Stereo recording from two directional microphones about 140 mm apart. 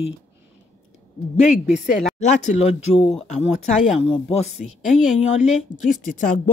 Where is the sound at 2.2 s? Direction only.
55° left (ahead or behind).